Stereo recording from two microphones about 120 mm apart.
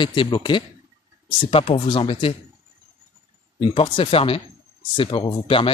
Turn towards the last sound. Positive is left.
turn(degrees=50)  # may be behind; listen again after turning